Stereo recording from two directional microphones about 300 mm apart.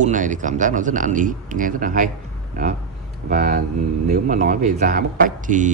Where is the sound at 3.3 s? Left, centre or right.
Right.